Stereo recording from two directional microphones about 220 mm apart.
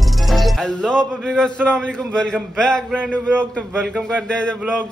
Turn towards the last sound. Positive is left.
turn(degrees=5)  # may be behind; listen again after turning